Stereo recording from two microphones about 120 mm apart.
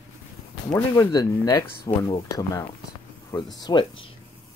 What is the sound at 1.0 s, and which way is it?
Speech, 30° left (ahead or behind).